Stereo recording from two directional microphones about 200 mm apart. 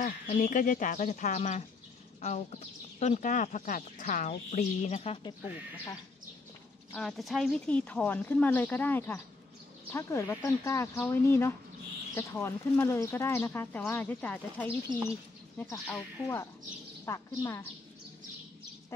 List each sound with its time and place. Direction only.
0.0 s speech: 40° left (ahead or behind)
6.9 s speech: centre (ahead or behind)